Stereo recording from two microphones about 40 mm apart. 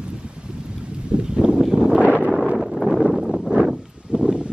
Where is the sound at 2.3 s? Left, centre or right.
Centre.